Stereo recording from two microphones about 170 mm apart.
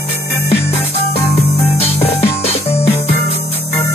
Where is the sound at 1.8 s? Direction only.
35° left (ahead or behind).